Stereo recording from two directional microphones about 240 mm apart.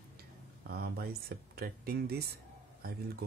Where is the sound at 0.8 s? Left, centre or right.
Right.